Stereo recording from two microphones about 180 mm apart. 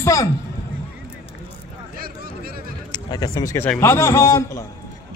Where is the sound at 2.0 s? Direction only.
55° right (ahead or behind).